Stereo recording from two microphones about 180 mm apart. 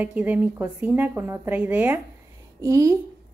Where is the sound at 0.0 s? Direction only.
10° right (ahead or behind).